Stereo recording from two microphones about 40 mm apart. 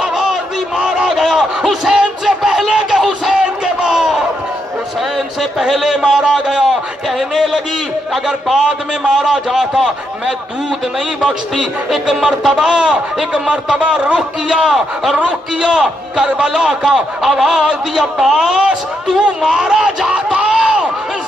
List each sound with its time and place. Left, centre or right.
0.0 s a sound: centre
5.1 s a man's voice: centre
8.5 s a man's voice: centre
11.9 s a man's voice: centre
19.4 s a man's voice: centre
20.3 s a sound: centre